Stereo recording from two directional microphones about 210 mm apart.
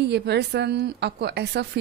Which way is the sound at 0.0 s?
55° right (ahead or behind).